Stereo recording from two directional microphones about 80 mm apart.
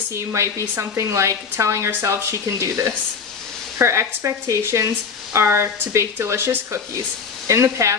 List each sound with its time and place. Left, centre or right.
0.1 s speech: right